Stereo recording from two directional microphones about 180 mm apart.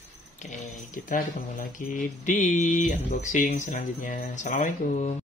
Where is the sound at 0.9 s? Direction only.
45° left (ahead or behind).